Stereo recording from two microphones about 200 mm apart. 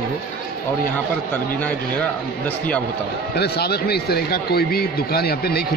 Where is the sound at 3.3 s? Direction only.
55° left (ahead or behind).